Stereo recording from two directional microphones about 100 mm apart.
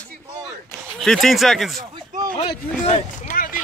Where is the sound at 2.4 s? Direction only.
70° left (ahead or behind).